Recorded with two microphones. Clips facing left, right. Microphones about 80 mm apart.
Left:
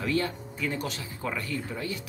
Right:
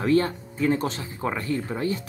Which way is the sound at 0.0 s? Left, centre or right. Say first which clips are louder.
Right 7 dB; right.